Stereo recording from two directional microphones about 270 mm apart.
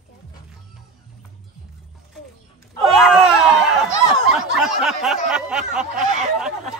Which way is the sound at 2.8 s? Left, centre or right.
Centre.